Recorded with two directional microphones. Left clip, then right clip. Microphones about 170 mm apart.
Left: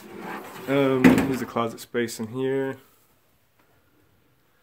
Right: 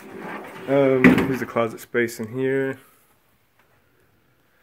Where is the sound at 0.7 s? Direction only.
20° left (ahead or behind).